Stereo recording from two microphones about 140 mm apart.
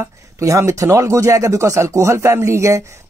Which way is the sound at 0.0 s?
20° right (ahead or behind).